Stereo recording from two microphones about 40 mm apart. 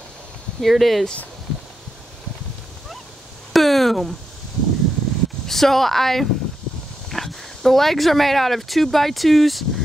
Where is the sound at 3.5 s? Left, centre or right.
Centre.